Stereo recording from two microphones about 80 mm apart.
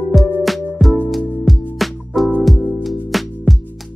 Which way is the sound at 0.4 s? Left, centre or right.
Centre.